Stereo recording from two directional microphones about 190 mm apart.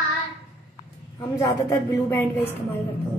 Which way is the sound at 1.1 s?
20° left (ahead or behind).